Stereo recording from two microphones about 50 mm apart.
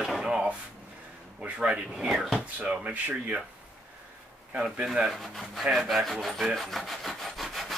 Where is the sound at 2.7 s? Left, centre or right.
Right.